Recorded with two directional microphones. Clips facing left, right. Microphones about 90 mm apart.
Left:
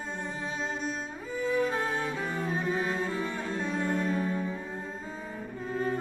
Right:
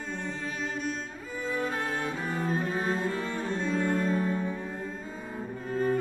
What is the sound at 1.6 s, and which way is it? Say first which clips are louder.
Music: left 1 dB; 40° right (ahead or behind).